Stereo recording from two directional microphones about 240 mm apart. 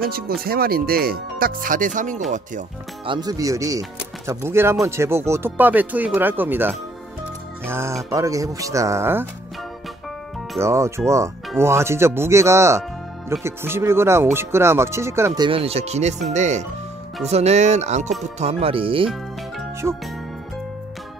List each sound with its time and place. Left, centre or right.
0.4 s speech: right
3.1 s speech: centre
10.6 s speech: centre
19.8 s speech: centre